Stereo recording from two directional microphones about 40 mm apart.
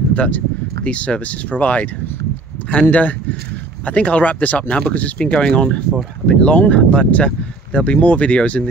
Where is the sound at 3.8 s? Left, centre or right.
Left.